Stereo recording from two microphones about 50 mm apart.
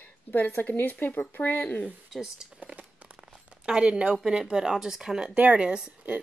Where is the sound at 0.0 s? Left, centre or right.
Left.